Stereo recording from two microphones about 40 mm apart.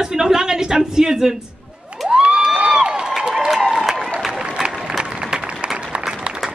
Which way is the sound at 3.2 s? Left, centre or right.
Centre.